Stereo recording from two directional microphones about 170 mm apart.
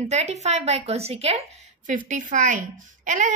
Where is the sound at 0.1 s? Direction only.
40° right (ahead or behind).